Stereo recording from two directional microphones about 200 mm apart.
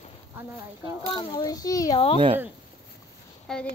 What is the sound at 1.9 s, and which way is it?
Speech, 30° left (ahead or behind).